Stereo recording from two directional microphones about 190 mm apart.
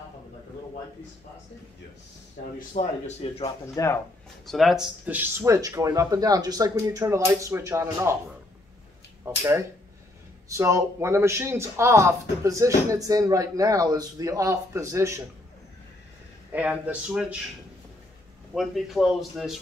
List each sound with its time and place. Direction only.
2.7 s speech: 35° left (ahead or behind)
3.4 s speech: 15° left (ahead or behind)
4.5 s a man's voice: centre (ahead or behind)
9.2 s a man's voice: 15° right (ahead or behind)
16.5 s a man's voice: 5° right (ahead or behind)
18.5 s a man's voice: centre (ahead or behind)